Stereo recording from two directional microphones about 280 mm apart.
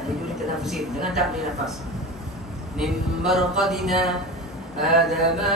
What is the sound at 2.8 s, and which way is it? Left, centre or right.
Speech, centre.